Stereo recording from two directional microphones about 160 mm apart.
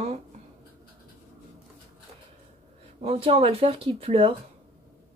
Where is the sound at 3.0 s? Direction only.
40° right (ahead or behind).